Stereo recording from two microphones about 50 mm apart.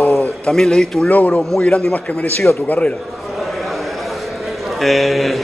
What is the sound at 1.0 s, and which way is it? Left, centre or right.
Speech, left.